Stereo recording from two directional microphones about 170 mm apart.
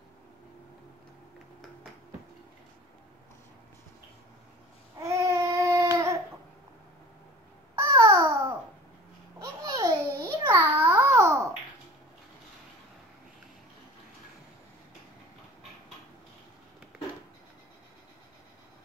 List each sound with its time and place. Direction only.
5.0 s babbling: 15° right (ahead or behind)
7.7 s babbling: 20° right (ahead or behind)